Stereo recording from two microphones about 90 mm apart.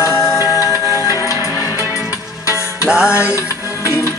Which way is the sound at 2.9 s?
10° right (ahead or behind).